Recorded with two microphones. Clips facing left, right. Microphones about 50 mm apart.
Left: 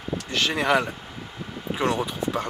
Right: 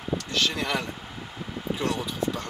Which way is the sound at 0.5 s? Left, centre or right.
Left.